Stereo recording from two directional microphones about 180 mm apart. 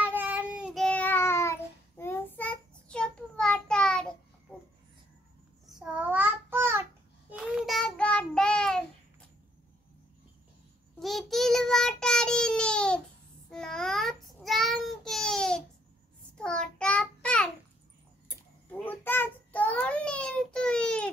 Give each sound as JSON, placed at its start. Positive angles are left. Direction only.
{"t": 0.0, "sound": "child singing", "side_deg": -10}
{"t": 5.7, "sound": "child singing", "side_deg": -5}
{"t": 7.3, "sound": "child singing", "side_deg": 0}
{"t": 11.0, "sound": "child singing", "side_deg": 0}
{"t": 18.7, "sound": "child singing", "side_deg": 10}